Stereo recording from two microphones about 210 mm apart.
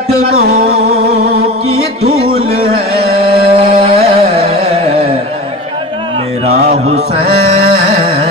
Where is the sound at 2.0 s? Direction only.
30° right (ahead or behind).